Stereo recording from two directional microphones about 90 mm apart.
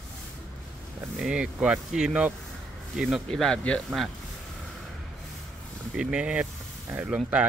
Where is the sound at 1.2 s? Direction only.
10° right (ahead or behind); by 3.8 s 10° left (ahead or behind).